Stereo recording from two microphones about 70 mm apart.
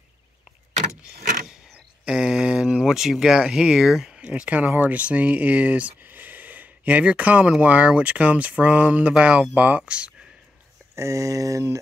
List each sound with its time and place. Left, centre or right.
2.0 s speech: centre
4.2 s speech: centre
11.0 s speech: right